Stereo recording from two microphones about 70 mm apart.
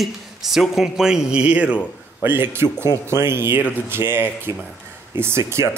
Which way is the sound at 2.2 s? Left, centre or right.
Right.